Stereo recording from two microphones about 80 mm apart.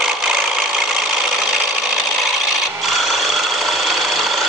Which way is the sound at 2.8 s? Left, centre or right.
Centre.